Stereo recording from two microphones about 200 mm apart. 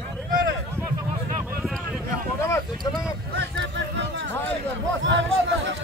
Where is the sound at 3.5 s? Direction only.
60° right (ahead or behind).